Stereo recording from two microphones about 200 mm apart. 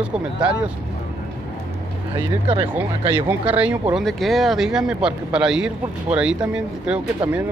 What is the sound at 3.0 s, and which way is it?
Speech, 30° right (ahead or behind).